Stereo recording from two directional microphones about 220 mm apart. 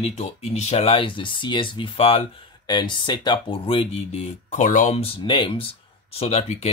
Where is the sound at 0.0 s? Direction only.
30° left (ahead or behind).